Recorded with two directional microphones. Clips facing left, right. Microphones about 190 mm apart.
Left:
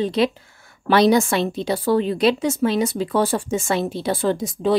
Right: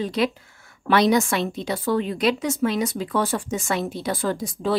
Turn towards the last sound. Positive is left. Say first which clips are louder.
# left 4 dB
turn(degrees=20)  # may be behind; listen again after turning